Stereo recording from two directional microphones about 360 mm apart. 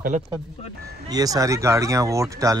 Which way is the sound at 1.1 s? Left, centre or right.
Centre.